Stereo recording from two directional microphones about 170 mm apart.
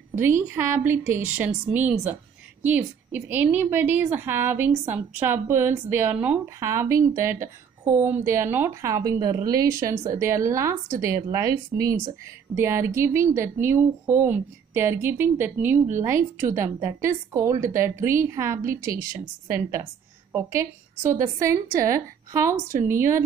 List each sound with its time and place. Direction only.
0.1 s a woman's voice: 15° right (ahead or behind)